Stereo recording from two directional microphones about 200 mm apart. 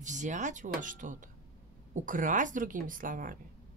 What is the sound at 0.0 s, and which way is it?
A woman's voice, 40° right (ahead or behind).